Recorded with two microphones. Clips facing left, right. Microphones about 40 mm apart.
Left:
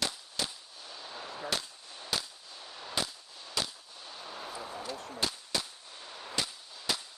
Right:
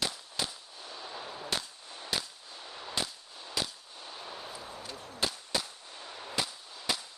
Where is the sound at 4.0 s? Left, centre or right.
Centre.